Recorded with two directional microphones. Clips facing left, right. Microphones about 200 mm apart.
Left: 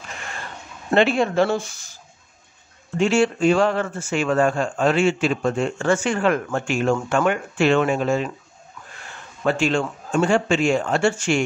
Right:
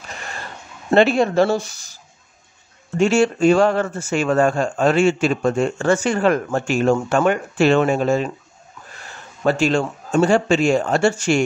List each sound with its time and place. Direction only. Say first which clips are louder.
0.9 s speech: right 3 dB; 40° right (ahead or behind)
3.0 s speech: right 3 dB; 45° right (ahead or behind)
9.4 s speech: right 3 dB; 40° right (ahead or behind)